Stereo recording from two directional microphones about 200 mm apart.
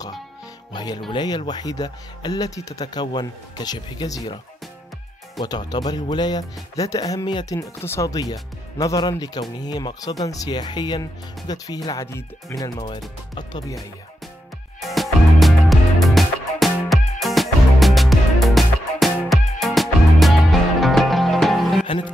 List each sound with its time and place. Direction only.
0.7 s speech: 20° left (ahead or behind)
5.4 s speech: 20° left (ahead or behind)
14.8 s music: centre (ahead or behind)